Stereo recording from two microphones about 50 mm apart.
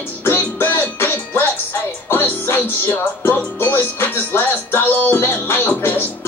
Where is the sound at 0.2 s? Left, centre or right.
Left.